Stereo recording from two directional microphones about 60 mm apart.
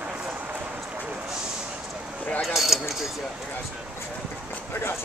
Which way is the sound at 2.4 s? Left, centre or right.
Centre.